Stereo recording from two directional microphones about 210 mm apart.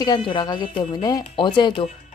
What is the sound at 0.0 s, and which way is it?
A woman's voice, 25° left (ahead or behind).